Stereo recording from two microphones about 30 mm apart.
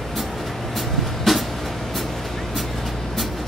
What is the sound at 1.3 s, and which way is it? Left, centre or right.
Vehicle, centre.